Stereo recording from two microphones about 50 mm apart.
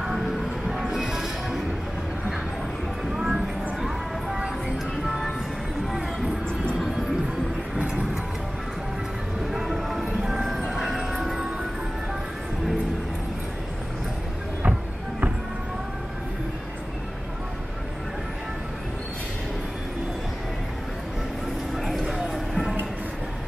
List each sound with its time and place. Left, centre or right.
0.7 s music: centre
3.2 s a sound: centre
5.9 s music: centre
7.9 s music: centre
9.5 s train: centre
10.2 s music: centre
10.7 s train: centre
14.6 s music: right
21.7 s clip-clop: centre
22.0 s a sound: centre
22.5 s music: centre